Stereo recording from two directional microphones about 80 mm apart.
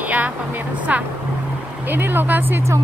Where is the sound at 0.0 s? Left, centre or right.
Right.